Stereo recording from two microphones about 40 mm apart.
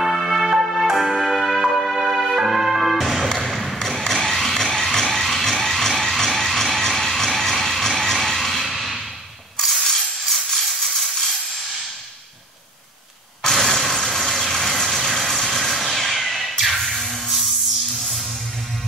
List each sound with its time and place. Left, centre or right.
0.0 s music: centre
3.3 s a sound: centre
4.0 s vehicle: centre
9.7 s a sound: centre
13.4 s vehicle: centre
16.8 s music: centre